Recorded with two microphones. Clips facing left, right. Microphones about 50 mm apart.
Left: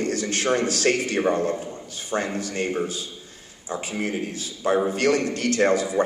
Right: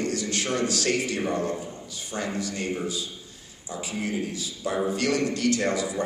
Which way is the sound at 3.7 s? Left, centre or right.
Left.